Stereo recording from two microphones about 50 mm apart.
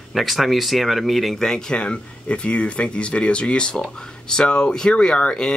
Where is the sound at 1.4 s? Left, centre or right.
Centre.